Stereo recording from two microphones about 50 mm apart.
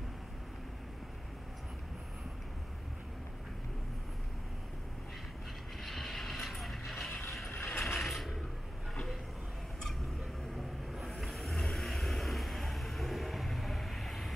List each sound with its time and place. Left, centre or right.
5.9 s vehicle: centre
7.5 s vehicle: left
7.8 s mechanisms: centre
8.9 s a sound: centre
11.1 s vehicle: centre